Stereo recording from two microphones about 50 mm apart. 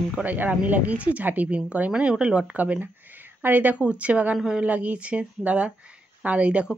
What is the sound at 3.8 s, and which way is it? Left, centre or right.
Speech, right.